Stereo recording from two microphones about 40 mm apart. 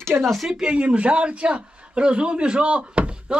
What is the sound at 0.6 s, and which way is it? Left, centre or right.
A man's voice, right.